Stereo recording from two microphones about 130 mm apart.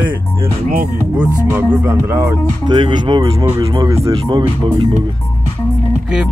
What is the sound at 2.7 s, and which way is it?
Speech, 35° right (ahead or behind).